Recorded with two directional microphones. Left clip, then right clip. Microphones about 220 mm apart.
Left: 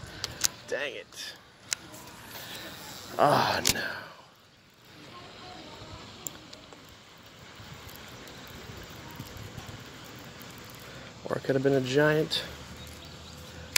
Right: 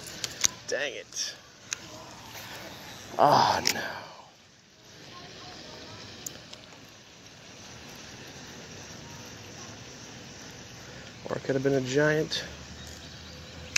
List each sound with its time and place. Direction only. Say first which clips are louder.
0.2 s keys jangling: right 2 dB; centre (ahead or behind)
3.2 s speech: right 2 dB; 5° left (ahead or behind)
11.2 s speech: left 1 dB; 10° left (ahead or behind)